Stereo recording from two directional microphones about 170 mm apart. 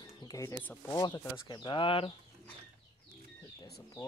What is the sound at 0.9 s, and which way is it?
Speech, 25° left (ahead or behind).